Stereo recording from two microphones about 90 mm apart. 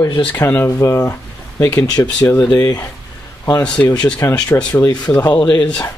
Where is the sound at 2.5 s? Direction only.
40° left (ahead or behind).